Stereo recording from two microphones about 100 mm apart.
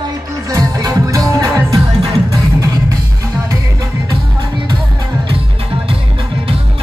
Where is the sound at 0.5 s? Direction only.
35° right (ahead or behind).